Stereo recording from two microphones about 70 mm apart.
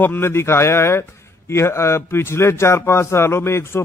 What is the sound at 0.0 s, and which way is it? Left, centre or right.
Speech, left.